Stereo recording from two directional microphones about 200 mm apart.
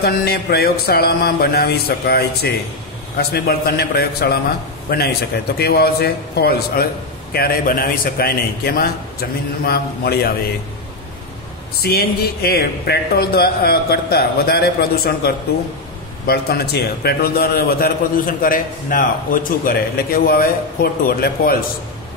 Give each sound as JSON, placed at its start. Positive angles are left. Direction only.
{"t": 0.0, "sound": "a man's voice", "side_deg": 50}
{"t": 11.8, "sound": "a man's voice", "side_deg": 50}